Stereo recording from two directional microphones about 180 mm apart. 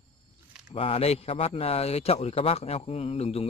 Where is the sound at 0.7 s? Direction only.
35° left (ahead or behind).